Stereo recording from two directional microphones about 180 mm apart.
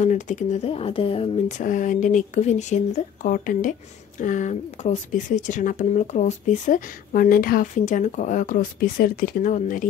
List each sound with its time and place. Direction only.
0.0 s speech: 40° left (ahead or behind)
1.6 s speech: 45° left (ahead or behind)